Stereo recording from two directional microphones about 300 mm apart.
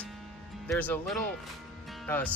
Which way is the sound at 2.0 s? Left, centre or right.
Centre.